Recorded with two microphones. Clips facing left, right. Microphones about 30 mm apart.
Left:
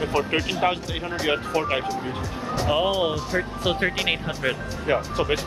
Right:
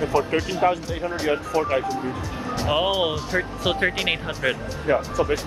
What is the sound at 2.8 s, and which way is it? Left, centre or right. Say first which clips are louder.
Speech: even; centre.